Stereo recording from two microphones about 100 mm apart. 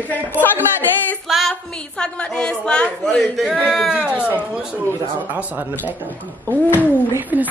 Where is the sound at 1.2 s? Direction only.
Centre (ahead or behind).